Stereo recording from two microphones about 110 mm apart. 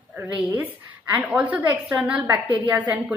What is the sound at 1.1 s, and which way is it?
A woman's voice, 15° right (ahead or behind).